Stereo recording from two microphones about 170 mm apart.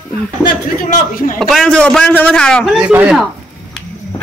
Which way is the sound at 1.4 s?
Centre (ahead or behind).